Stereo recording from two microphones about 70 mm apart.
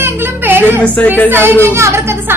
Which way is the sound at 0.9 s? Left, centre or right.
Left.